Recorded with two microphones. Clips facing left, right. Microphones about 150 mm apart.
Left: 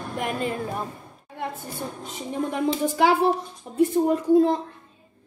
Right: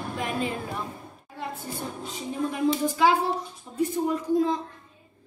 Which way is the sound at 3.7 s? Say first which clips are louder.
Left 6 dB; 55° left (ahead or behind).